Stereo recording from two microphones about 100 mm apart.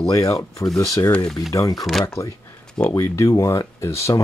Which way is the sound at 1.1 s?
10° left (ahead or behind).